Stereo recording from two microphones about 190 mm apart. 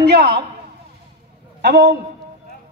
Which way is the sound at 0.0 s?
60° right (ahead or behind).